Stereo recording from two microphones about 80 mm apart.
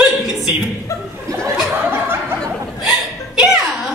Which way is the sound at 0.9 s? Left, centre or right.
Left.